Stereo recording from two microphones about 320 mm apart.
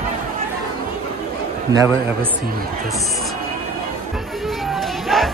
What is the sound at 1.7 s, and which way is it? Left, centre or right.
Speech, centre.